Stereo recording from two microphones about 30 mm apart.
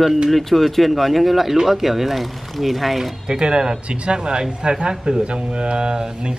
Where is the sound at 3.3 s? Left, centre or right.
Right.